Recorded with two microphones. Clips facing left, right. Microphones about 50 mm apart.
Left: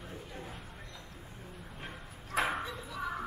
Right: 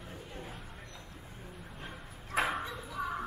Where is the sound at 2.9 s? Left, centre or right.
Right.